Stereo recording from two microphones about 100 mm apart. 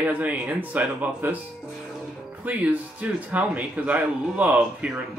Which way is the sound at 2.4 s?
15° right (ahead or behind).